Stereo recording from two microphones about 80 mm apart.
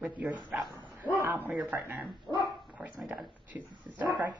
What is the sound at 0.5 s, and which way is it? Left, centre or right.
Speech, right.